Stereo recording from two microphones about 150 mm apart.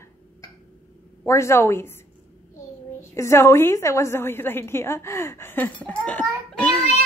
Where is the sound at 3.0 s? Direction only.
20° left (ahead or behind).